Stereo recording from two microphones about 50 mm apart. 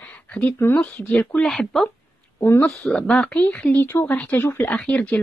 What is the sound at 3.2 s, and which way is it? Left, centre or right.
Speech, left.